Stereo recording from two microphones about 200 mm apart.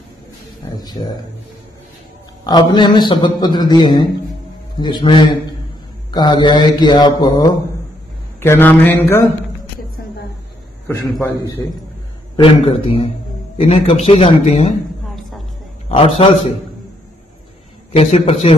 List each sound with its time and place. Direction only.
0.7 s a man's voice: 20° left (ahead or behind)
2.4 s a man's voice: 20° left (ahead or behind)
8.4 s a man's voice: 10° left (ahead or behind)
12.4 s a man's voice: 25° left (ahead or behind)
15.0 s music: centre (ahead or behind)
15.9 s a man's voice: 30° left (ahead or behind)
17.9 s a man's voice: 30° left (ahead or behind)